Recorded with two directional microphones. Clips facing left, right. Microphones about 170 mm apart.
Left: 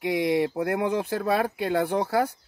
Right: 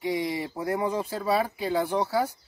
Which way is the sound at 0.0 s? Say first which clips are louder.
Left 5 dB; 65° left (ahead or behind).